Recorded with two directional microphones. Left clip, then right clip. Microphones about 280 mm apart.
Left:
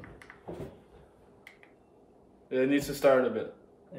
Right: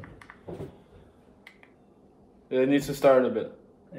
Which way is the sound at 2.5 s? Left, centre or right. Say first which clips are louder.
Right 3 dB; centre.